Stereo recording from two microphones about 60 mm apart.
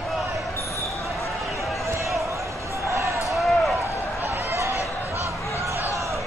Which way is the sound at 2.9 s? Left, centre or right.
Right.